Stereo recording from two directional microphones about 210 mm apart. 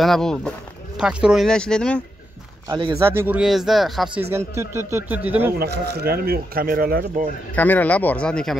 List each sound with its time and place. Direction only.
0.0 s speech: centre (ahead or behind)
2.7 s speech: 15° right (ahead or behind)
5.6 s speech: 50° right (ahead or behind)
7.5 s speech: 10° left (ahead or behind)